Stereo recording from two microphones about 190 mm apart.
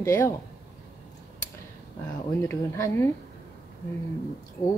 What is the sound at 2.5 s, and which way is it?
Speech, 15° left (ahead or behind).